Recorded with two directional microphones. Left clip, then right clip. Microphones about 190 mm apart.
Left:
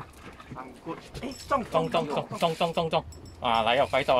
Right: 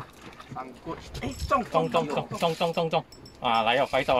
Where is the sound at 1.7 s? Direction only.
20° left (ahead or behind).